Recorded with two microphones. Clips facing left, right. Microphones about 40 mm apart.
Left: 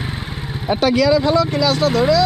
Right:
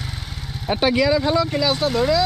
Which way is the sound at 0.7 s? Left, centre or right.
Centre.